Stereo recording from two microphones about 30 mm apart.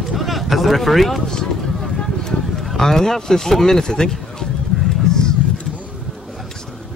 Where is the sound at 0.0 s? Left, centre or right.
Centre.